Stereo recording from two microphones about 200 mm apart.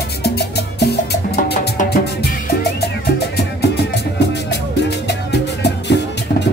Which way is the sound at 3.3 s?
55° left (ahead or behind).